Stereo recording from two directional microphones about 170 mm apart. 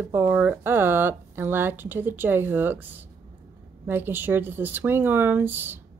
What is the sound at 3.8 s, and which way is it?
Speech, 10° right (ahead or behind).